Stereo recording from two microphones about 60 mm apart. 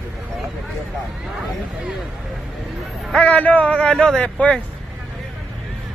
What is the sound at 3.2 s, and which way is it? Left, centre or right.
Speech, left.